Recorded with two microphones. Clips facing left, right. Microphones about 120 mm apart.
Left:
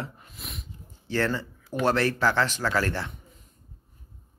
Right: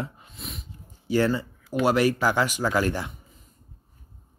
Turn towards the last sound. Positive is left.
turn(degrees=-15)  # may be behind; listen again after turning